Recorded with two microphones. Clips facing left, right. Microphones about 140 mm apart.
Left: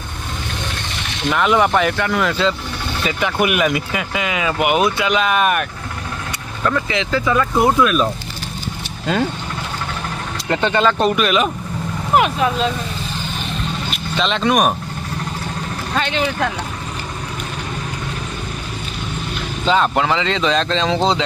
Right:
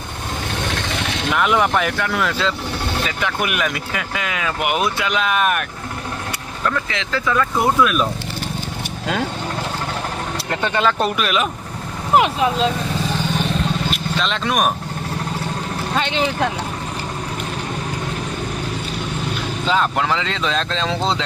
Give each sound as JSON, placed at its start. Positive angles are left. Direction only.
{"t": 1.3, "sound": "speech", "side_deg": 0}
{"t": 10.5, "sound": "speech", "side_deg": -5}
{"t": 12.2, "sound": "speech", "side_deg": -25}
{"t": 14.1, "sound": "speech", "side_deg": 0}
{"t": 15.9, "sound": "speech", "side_deg": -25}
{"t": 19.7, "sound": "speech", "side_deg": 0}